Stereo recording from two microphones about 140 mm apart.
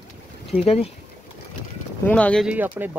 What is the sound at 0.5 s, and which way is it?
Speech, 40° left (ahead or behind).